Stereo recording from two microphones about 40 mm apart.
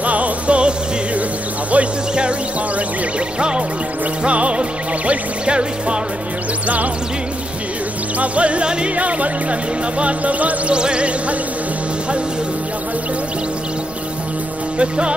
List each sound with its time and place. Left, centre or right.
0.0 s music: right
1.7 s speech: right
3.3 s music: right
8.2 s speech: right
10.7 s music: right
14.8 s music: right